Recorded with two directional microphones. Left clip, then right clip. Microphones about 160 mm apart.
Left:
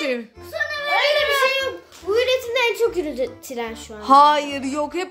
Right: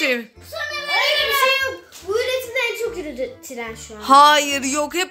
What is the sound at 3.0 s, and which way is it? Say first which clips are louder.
Speech: left 3 dB; 55° left (ahead or behind).